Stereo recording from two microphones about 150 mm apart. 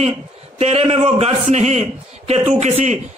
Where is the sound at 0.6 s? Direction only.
45° right (ahead or behind).